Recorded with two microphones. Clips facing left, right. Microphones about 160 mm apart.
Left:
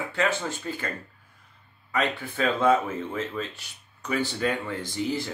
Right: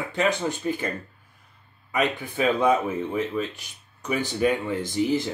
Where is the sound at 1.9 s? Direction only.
15° right (ahead or behind).